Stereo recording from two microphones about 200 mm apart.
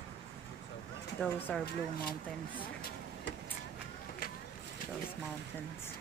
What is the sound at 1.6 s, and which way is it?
Speech, 50° left (ahead or behind).